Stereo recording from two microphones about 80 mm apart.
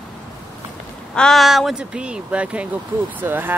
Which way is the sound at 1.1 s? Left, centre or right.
Centre.